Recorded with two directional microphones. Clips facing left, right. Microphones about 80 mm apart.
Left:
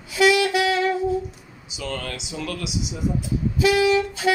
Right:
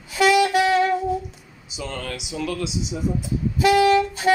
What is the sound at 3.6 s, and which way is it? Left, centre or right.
Vehicle, right.